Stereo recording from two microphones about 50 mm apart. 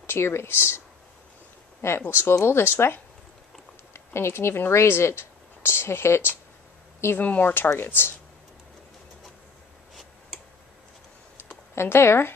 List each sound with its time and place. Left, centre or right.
0.0 s speech: left
3.9 s speech: left
7.2 s speech: left
7.7 s speech: left
11.7 s speech: left